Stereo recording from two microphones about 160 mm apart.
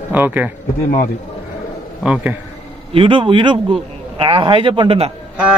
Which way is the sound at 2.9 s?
35° right (ahead or behind).